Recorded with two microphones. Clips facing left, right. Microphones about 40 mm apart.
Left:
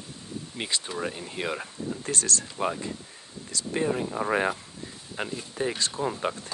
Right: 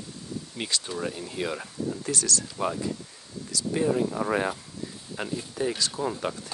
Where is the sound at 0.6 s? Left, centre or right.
Left.